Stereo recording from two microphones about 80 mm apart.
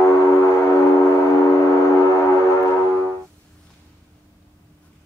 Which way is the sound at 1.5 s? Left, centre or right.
Left.